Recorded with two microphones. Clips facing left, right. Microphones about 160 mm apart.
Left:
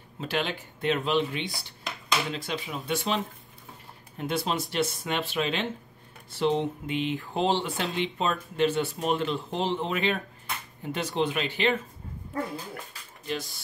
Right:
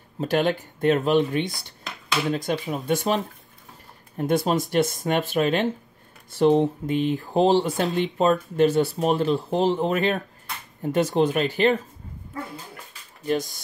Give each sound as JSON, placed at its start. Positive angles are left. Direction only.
{"t": 0.2, "sound": "speech", "side_deg": -45}
{"t": 4.2, "sound": "speech", "side_deg": -45}
{"t": 13.3, "sound": "speech", "side_deg": -45}